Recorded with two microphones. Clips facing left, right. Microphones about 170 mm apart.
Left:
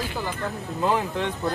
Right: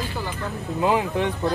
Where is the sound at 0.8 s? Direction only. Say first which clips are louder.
Right 3 dB; 10° right (ahead or behind).